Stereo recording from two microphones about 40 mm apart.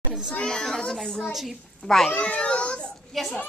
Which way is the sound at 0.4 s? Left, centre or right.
Left.